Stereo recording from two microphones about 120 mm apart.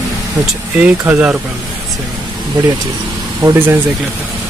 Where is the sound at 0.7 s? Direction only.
15° right (ahead or behind).